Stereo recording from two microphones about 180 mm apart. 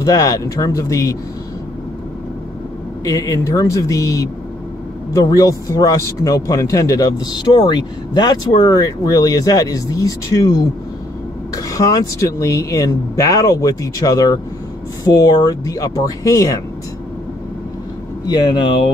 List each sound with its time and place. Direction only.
0.0 s a man's voice: 20° left (ahead or behind)
3.1 s a man's voice: 20° left (ahead or behind)
18.2 s a man's voice: 20° left (ahead or behind)